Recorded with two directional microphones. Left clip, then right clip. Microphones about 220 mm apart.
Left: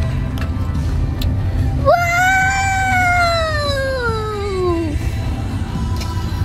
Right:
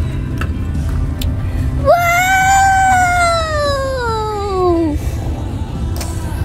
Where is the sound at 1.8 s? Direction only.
20° right (ahead or behind).